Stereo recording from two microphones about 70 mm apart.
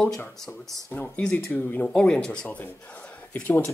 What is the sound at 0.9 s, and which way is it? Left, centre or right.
Speech, left.